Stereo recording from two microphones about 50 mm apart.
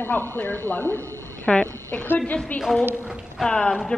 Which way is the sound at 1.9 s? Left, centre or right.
Left.